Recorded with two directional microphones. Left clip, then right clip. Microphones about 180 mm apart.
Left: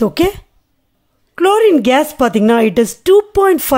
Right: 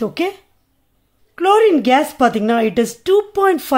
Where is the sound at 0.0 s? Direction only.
30° left (ahead or behind).